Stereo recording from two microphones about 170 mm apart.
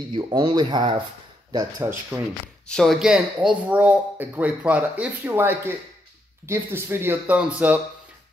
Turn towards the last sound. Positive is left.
turn(degrees=-10)  # may be behind; listen again after turning